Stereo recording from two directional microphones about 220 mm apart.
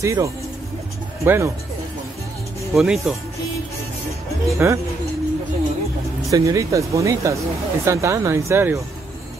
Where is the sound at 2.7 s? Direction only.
Centre (ahead or behind).